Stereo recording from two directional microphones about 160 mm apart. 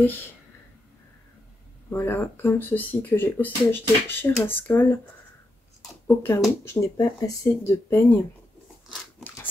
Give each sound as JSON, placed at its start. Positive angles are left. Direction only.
{"t": 0.0, "sound": "speech", "side_deg": 10}
{"t": 1.9, "sound": "speech", "side_deg": 15}
{"t": 6.0, "sound": "speech", "side_deg": 15}